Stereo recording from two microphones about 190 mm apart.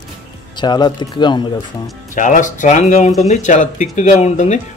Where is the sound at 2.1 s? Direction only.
40° left (ahead or behind).